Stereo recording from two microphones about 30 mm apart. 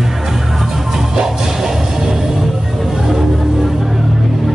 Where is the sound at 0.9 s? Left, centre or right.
Centre.